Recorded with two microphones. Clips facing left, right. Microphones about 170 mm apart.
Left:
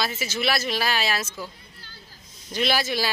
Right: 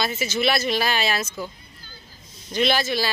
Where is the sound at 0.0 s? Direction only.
5° left (ahead or behind).